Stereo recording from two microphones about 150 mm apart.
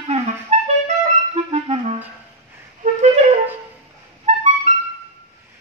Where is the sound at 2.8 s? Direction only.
55° right (ahead or behind).